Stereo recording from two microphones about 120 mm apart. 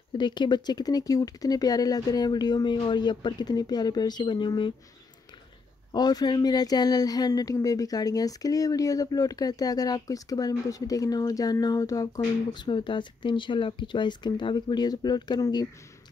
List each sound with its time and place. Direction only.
0.2 s speech: 40° left (ahead or behind)
5.9 s speech: 35° left (ahead or behind)
12.5 s speech: 40° left (ahead or behind)